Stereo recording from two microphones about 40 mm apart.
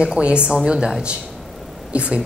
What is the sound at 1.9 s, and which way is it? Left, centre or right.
Speech, right.